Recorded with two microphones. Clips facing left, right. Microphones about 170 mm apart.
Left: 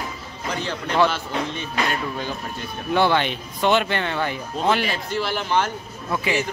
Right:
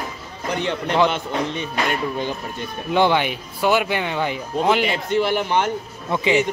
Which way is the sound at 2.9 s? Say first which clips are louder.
Right 1 dB; 15° right (ahead or behind).